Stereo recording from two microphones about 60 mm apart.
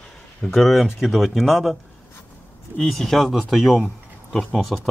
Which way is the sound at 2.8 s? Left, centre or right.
Centre.